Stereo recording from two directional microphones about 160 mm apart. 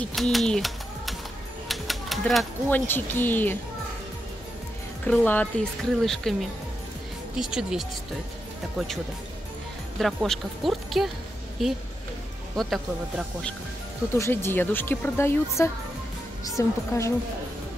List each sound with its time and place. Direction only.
0.0 s speech: centre (ahead or behind)
1.7 s typewriter: centre (ahead or behind)
2.7 s speech: 15° left (ahead or behind)
5.0 s speech: 10° left (ahead or behind)
7.3 s speech: 5° right (ahead or behind)
14.1 s speech: 15° left (ahead or behind)
16.4 s speech: 20° left (ahead or behind)